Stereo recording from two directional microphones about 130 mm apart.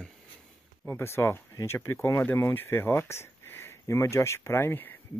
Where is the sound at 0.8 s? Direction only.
15° left (ahead or behind).